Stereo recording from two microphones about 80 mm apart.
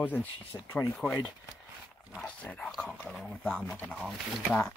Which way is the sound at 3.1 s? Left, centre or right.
Centre.